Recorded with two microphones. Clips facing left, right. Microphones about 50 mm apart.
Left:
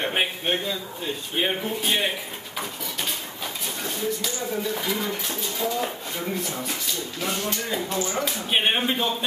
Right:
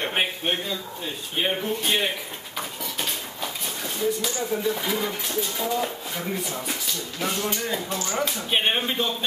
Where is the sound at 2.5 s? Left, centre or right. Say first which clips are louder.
Even; centre.